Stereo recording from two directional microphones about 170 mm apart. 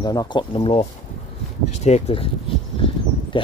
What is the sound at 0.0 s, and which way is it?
Speech, 25° left (ahead or behind).